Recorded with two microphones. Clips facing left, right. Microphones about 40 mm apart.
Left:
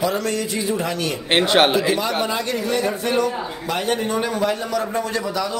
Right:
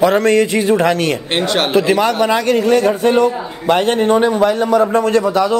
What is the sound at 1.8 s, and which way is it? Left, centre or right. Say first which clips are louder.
A man's voice: right 7 dB; right.